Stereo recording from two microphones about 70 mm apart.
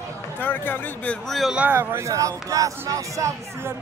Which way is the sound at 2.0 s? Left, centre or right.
Right.